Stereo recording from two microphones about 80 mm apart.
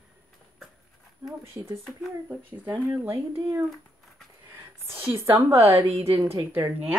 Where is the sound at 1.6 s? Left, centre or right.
Right.